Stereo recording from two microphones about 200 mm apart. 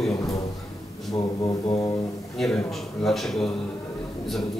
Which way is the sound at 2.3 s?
Centre (ahead or behind).